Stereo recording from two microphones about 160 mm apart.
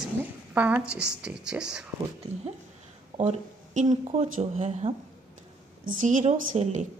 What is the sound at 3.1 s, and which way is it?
Speech, 45° right (ahead or behind).